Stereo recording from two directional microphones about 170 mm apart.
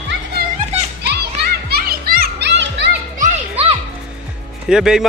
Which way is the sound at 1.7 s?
60° right (ahead or behind).